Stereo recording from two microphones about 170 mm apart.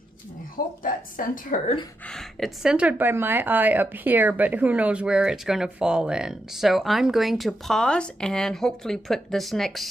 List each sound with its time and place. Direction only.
0.8 s speech: 55° left (ahead or behind)
2.0 s speech: centre (ahead or behind)